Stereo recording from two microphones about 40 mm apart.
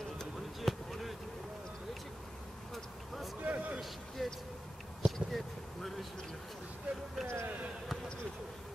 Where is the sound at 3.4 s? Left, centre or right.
Right.